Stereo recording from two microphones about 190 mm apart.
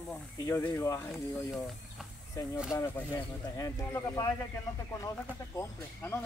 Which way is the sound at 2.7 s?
15° left (ahead or behind).